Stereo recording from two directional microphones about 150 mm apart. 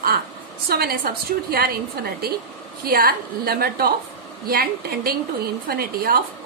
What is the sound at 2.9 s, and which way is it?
A woman's voice, 75° right (ahead or behind).